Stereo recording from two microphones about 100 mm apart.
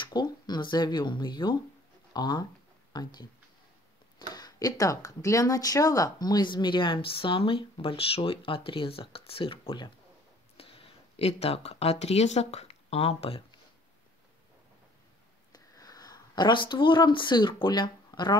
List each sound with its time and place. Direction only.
0.0 s speech: 45° left (ahead or behind)
4.3 s speech: 40° left (ahead or behind); by 9.9 s 60° left (ahead or behind)
10.6 s speech: 80° left
15.5 s speech: 40° left (ahead or behind)